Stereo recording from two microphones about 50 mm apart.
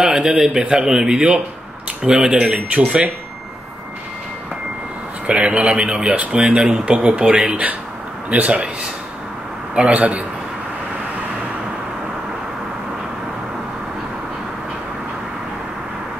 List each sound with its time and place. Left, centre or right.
0.0 s a sound: centre
0.4 s speech: centre
5.2 s speech: right
9.8 s speech: right